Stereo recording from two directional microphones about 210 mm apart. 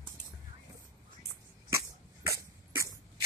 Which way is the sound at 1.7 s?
15° right (ahead or behind).